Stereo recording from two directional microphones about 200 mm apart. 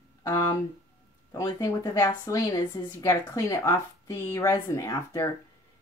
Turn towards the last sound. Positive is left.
turn(degrees=15)  # may be behind; listen again after turning